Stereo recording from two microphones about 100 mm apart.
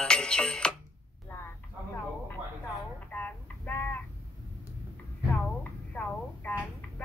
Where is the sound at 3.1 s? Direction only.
15° left (ahead or behind).